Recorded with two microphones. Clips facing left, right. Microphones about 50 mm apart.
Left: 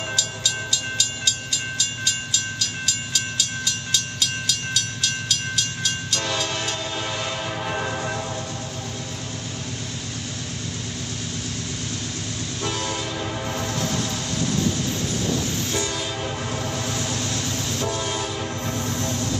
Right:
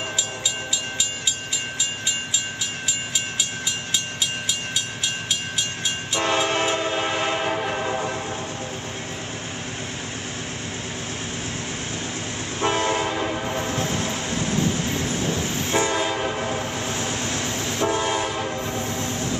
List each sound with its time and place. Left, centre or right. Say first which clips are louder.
2.0 s train: even; centre
7.8 s train: right 2 dB; right
12.5 s train: right 7 dB; right
15.3 s train: right 2 dB; right